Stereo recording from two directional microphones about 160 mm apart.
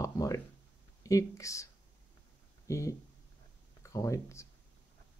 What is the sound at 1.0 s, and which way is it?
Speech, 20° left (ahead or behind).